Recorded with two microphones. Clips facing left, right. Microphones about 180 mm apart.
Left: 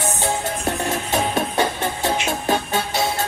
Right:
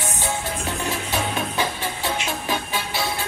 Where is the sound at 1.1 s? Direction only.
45° left (ahead or behind).